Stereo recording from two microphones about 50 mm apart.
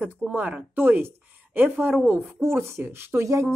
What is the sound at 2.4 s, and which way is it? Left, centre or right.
Speech, right.